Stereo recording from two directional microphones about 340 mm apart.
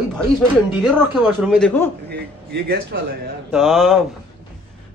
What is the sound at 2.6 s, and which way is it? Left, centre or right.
Speech, right.